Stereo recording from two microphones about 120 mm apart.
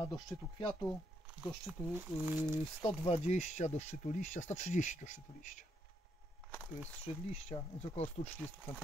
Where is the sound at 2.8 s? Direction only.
65° left (ahead or behind); by 5.6 s 90° left.